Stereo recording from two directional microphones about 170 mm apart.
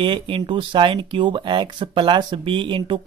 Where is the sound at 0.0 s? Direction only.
30° right (ahead or behind).